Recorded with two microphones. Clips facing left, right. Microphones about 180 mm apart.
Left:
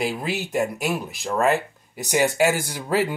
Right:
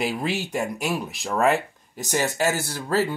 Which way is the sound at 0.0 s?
Centre (ahead or behind).